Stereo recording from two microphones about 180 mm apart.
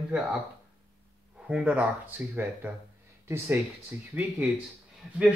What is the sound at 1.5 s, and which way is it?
Speech, 5° right (ahead or behind).